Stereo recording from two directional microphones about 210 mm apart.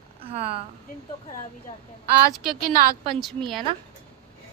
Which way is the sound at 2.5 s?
45° right (ahead or behind).